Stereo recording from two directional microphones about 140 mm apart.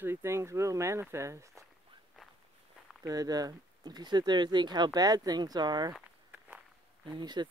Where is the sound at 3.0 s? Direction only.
25° right (ahead or behind).